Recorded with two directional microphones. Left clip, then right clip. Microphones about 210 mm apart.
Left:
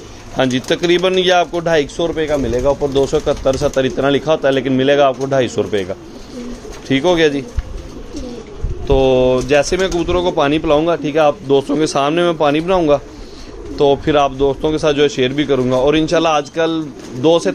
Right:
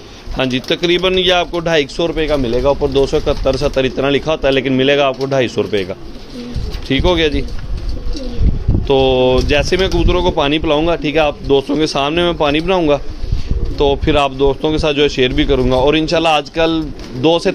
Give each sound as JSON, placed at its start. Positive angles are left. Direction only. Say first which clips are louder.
{"t": 0.4, "sound": "a man's voice", "louder": "left 1 dB", "side_deg": -10}
{"t": 8.8, "sound": "a man's voice", "louder": "even", "side_deg": -10}